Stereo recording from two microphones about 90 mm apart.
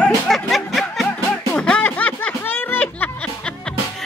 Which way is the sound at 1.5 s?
15° left (ahead or behind).